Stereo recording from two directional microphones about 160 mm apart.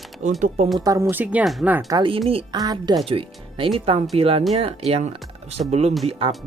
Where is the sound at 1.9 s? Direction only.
30° right (ahead or behind).